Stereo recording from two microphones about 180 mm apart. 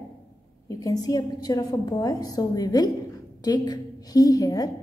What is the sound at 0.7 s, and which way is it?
A woman's voice, 20° left (ahead or behind).